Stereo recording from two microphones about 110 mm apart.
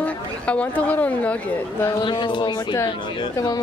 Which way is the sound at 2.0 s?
45° left (ahead or behind).